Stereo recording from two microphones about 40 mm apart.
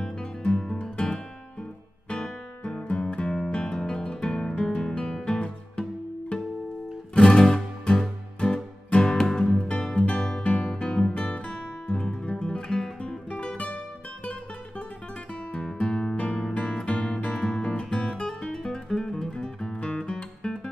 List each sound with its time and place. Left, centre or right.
0.0 s guitar: left
1.0 s music: centre
3.5 s guitar: left
5.4 s music: left
10.0 s music: left
10.6 s guitar: centre
10.9 s music: centre
11.1 s music: left
13.3 s music: left
15.8 s music: left
17.9 s guitar: left